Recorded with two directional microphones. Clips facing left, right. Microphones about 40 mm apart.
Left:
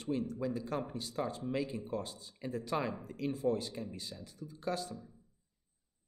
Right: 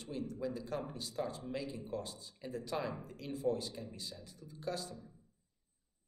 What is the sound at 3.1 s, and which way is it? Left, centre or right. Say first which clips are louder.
Speech: left 3 dB; left.